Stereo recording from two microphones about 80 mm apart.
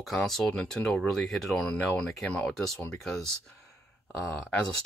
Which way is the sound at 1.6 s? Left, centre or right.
Centre.